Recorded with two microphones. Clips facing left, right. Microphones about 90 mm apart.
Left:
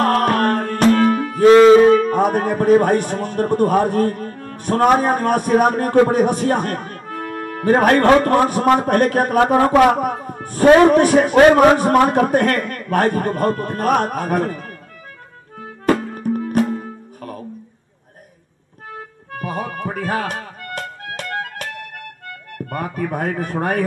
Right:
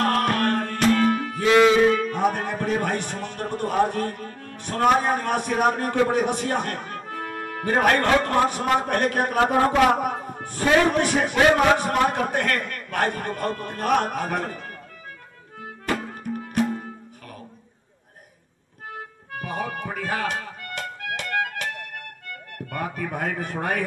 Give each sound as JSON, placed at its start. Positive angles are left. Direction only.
{"t": 0.0, "sound": "music", "side_deg": 45}
{"t": 1.6, "sound": "a man's voice", "side_deg": 40}
{"t": 15.9, "sound": "music", "side_deg": 50}
{"t": 19.3, "sound": "music", "side_deg": 45}
{"t": 22.7, "sound": "a man's voice", "side_deg": 45}